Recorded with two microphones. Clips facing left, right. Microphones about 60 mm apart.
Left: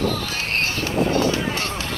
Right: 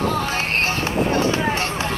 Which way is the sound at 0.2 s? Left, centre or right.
Right.